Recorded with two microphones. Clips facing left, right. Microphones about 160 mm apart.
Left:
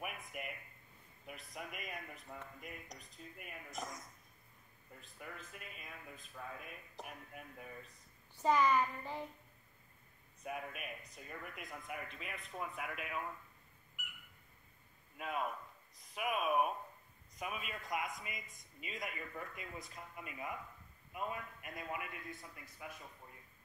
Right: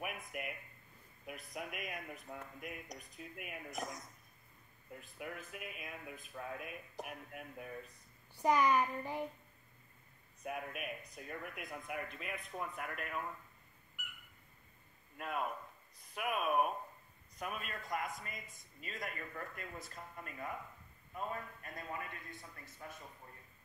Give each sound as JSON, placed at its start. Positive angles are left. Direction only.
{"t": 0.0, "sound": "a sound", "side_deg": 0}
{"t": 1.2, "sound": "a man's voice", "side_deg": -5}
{"t": 5.2, "sound": "a child's voice", "side_deg": -5}
{"t": 10.4, "sound": "a man's voice", "side_deg": 0}
{"t": 15.1, "sound": "a man's voice", "side_deg": 0}